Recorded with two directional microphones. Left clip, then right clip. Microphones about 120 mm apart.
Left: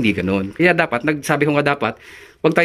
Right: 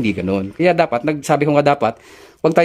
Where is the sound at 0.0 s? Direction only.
20° right (ahead or behind).